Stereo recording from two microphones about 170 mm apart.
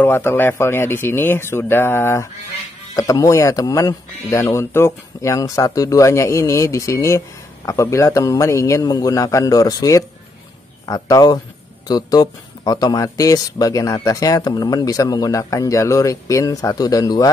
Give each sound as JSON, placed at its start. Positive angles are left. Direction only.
{"t": 0.0, "sound": "speech", "side_deg": 15}